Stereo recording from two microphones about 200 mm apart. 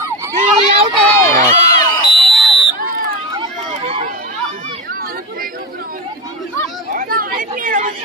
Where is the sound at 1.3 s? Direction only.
35° right (ahead or behind).